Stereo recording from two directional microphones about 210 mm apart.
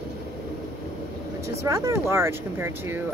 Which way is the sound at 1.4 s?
15° right (ahead or behind).